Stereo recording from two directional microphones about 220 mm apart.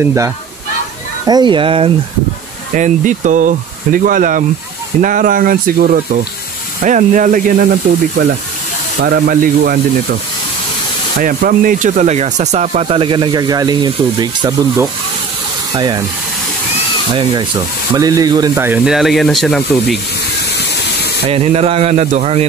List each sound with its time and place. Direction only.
0.0 s speech: 15° right (ahead or behind)
2.7 s speech: 35° right (ahead or behind)
9.0 s speech: 45° right (ahead or behind)
11.1 s speech: 40° right (ahead or behind); by 16.0 s 20° right (ahead or behind)
17.1 s speech: 20° right (ahead or behind); by 20.0 s centre (ahead or behind)
21.3 s speech: 25° right (ahead or behind)